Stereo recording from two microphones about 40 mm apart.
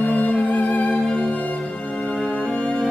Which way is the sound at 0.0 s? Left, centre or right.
Left.